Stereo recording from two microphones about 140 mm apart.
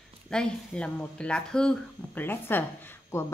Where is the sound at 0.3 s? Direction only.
5° left (ahead or behind).